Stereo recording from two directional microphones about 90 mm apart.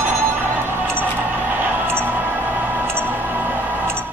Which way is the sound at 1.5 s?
20° right (ahead or behind).